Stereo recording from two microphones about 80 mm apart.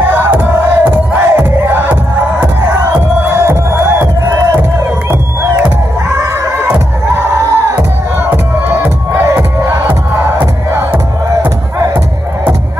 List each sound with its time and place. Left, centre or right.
0.1 s crowd: right
2.4 s music: right
7.2 s music: right